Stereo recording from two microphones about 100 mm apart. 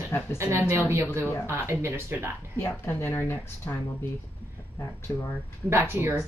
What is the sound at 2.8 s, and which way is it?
Speech, 25° left (ahead or behind).